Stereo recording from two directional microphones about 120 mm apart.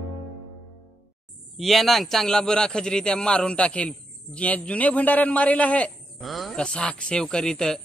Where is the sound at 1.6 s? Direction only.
Centre (ahead or behind).